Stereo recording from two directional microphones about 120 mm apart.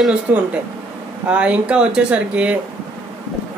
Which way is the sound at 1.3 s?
10° right (ahead or behind).